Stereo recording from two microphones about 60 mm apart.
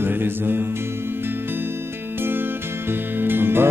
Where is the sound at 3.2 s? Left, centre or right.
Right.